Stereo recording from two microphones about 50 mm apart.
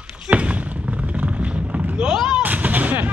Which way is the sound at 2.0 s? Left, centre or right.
Centre.